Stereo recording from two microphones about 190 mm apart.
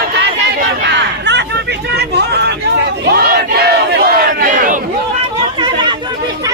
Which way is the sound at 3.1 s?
55° right (ahead or behind).